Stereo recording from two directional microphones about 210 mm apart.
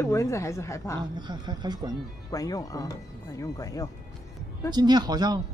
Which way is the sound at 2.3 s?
15° left (ahead or behind).